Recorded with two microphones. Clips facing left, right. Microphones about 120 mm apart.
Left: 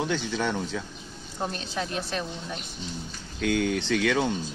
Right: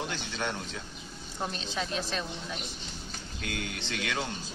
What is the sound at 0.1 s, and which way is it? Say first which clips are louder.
Speech: left 7 dB; 90° left.